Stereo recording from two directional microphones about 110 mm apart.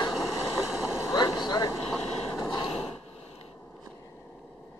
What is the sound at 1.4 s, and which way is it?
Vehicle, 35° left (ahead or behind).